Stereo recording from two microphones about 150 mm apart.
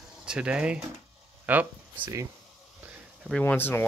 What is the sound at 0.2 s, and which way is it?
Speech, 5° right (ahead or behind).